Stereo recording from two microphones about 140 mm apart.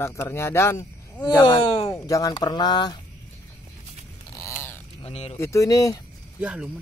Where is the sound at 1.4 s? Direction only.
35° left (ahead or behind).